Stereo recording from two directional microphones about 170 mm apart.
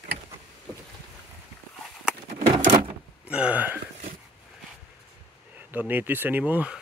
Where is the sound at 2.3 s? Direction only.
45° right (ahead or behind).